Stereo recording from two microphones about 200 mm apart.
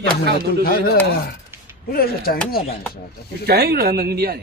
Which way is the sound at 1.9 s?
50° left (ahead or behind).